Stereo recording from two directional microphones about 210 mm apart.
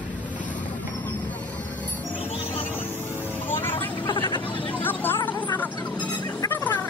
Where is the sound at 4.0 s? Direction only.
25° left (ahead or behind).